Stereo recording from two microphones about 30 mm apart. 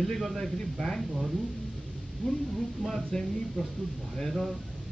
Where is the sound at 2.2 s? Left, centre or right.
Left.